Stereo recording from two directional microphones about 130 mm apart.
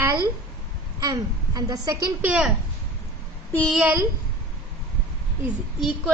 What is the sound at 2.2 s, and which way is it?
Speech, 10° right (ahead or behind).